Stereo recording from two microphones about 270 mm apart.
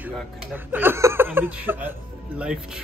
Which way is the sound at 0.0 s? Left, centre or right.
Centre.